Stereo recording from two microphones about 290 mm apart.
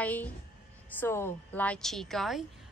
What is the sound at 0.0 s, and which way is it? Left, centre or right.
A woman's voice, centre.